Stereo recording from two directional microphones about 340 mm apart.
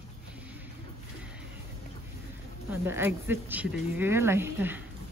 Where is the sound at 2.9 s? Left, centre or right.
Centre.